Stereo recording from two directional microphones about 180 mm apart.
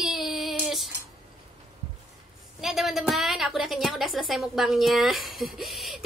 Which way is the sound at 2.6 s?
Centre (ahead or behind).